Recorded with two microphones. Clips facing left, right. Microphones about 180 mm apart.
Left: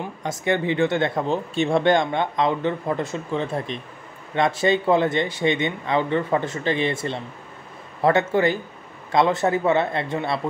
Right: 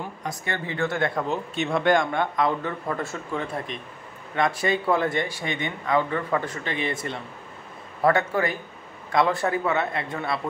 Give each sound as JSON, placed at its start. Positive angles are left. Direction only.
{"t": 0.2, "sound": "speech", "side_deg": 20}